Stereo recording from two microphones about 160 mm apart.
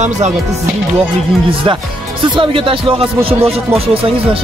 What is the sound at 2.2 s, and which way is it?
Speech, 35° right (ahead or behind).